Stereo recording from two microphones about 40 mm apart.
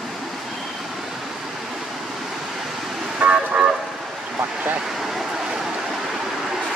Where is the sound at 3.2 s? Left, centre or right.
Right.